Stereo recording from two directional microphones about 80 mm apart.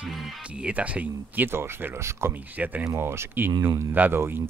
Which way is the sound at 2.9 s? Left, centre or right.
Right.